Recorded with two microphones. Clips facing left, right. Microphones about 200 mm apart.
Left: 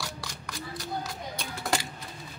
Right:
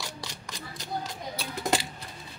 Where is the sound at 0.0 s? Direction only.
20° right (ahead or behind).